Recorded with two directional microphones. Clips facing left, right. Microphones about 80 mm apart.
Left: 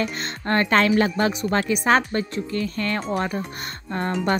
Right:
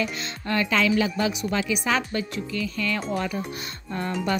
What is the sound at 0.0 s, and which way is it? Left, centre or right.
Speech, left.